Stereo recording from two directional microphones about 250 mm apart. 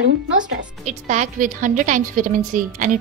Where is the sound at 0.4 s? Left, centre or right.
Right.